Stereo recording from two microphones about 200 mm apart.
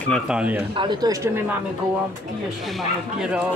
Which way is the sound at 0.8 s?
20° right (ahead or behind).